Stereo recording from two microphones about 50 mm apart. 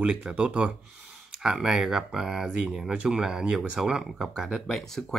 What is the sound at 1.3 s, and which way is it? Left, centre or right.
Speech, centre.